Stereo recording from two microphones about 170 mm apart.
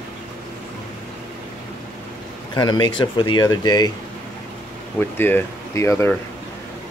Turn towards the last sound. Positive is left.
turn(degrees=15)  # may be behind; listen again after turning